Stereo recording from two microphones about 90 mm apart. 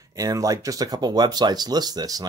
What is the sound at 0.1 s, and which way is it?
Speech, 40° right (ahead or behind).